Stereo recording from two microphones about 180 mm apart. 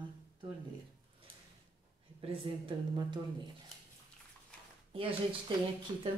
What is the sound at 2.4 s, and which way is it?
Speech, 30° right (ahead or behind).